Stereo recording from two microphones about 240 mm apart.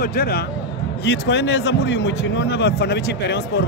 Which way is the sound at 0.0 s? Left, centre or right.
Left.